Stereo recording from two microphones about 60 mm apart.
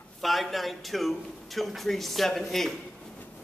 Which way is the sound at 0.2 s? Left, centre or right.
Centre.